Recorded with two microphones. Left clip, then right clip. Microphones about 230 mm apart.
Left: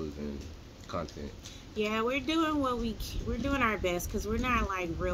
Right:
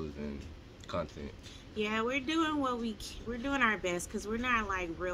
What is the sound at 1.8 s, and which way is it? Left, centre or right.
Speech, centre.